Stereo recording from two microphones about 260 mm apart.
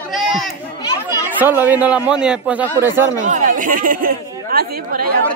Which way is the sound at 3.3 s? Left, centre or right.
Right.